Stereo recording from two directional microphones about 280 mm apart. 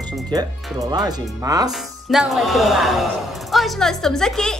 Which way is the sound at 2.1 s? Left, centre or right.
Centre.